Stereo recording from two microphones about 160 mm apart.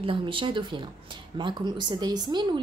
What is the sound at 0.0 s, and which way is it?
A woman's voice, 30° right (ahead or behind).